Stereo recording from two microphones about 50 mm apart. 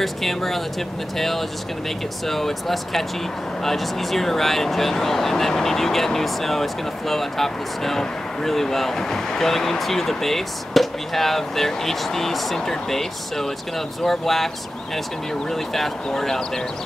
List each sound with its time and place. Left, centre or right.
0.0 s speech: centre
15.5 s speech: centre